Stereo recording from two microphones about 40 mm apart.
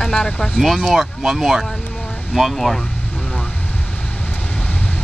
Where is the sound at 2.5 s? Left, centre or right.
Centre.